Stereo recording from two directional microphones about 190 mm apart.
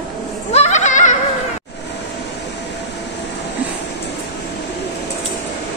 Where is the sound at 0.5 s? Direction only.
35° left (ahead or behind).